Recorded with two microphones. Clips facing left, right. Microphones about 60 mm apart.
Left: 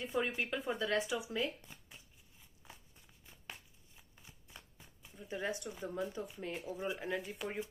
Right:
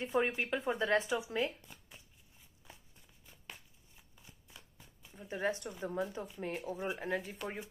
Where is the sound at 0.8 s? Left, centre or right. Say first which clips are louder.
Right 3 dB; right.